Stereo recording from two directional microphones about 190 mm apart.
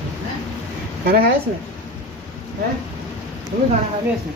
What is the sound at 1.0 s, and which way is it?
Speech, 55° right (ahead or behind).